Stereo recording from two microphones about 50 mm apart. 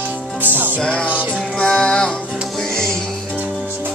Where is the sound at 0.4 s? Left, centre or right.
Right.